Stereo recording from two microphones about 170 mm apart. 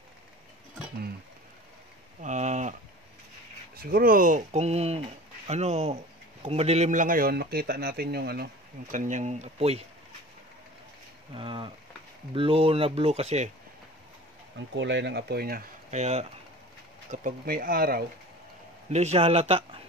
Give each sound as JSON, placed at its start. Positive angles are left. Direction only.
{"t": 2.2, "sound": "a sound", "side_deg": -45}
{"t": 3.7, "sound": "speech", "side_deg": -60}
{"t": 8.9, "sound": "speech", "side_deg": -45}
{"t": 11.3, "sound": "speech", "side_deg": -30}
{"t": 14.8, "sound": "speech", "side_deg": -90}
{"t": 16.0, "sound": "speech", "side_deg": -40}
{"t": 17.1, "sound": "speech", "side_deg": -50}
{"t": 18.9, "sound": "speech", "side_deg": -40}